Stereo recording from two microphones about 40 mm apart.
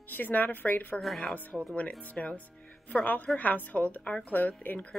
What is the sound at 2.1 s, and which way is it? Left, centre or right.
A woman's voice, left.